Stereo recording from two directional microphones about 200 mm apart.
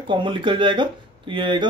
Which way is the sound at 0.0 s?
25° right (ahead or behind).